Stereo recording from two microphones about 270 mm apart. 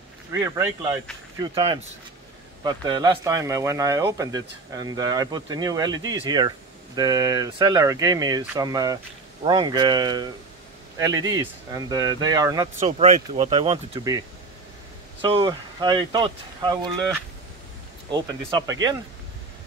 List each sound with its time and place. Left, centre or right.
0.3 s speech: centre
12.7 s speech: right
15.2 s speech: centre
18.7 s speech: centre